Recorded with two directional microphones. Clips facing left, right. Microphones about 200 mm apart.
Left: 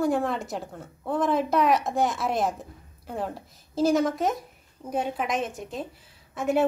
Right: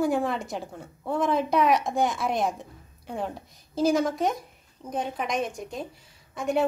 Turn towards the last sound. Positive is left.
turn(degrees=0)  # may be behind; listen again after turning